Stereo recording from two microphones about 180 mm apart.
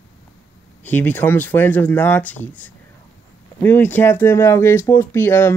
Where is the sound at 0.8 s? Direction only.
10° left (ahead or behind).